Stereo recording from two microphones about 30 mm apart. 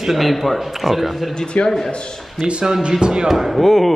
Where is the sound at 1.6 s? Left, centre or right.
Left.